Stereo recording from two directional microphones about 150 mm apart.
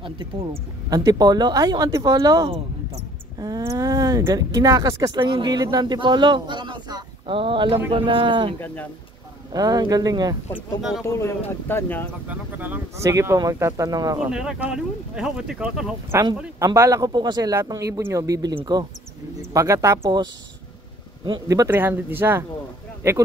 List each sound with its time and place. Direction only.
0.5 s speech: 25° right (ahead or behind)
8.5 s speech: 15° left (ahead or behind)
9.5 s speech: 25° right (ahead or behind)
10.5 s speech: centre (ahead or behind)
11.1 s speech: 20° left (ahead or behind)
12.3 s speech: 10° right (ahead or behind)
14.1 s speech: 5° right (ahead or behind)
16.1 s speech: 20° right (ahead or behind)
21.3 s speech: 25° right (ahead or behind)